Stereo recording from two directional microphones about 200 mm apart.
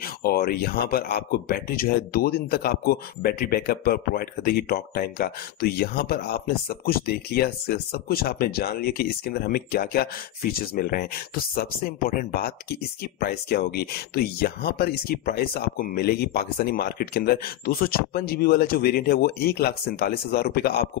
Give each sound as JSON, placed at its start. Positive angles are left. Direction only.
{"t": 0.0, "sound": "speech", "side_deg": 50}